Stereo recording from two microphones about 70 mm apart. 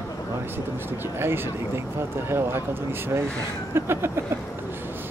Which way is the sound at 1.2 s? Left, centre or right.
Right.